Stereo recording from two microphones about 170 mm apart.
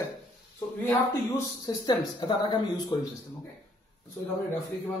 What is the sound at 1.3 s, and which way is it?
A man's voice, 25° left (ahead or behind).